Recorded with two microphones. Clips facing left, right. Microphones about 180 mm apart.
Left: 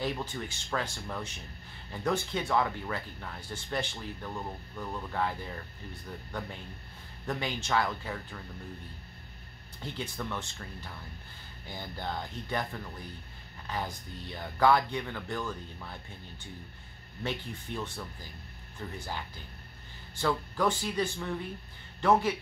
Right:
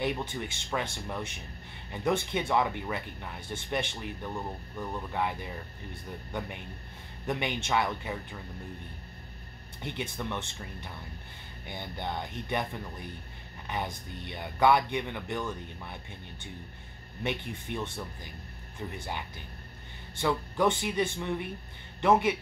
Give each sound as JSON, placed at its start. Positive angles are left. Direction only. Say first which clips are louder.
{"t": 0.0, "sound": "speech", "louder": "right 2 dB", "side_deg": -20}
{"t": 7.2, "sound": "speech", "louder": "right 2 dB", "side_deg": -20}
{"t": 9.8, "sound": "speech", "louder": "right 2 dB", "side_deg": -20}
{"t": 17.2, "sound": "speech", "louder": "right 2 dB", "side_deg": -20}